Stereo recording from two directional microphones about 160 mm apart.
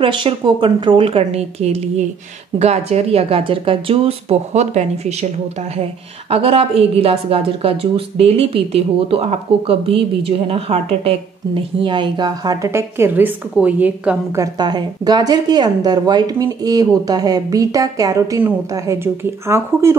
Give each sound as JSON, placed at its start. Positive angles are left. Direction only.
{"t": 0.0, "sound": "a woman's voice", "side_deg": -30}
{"t": 6.3, "sound": "a woman's voice", "side_deg": -35}
{"t": 14.4, "sound": "a woman's voice", "side_deg": -25}